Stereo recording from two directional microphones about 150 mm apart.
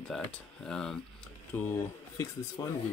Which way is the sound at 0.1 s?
5° left (ahead or behind).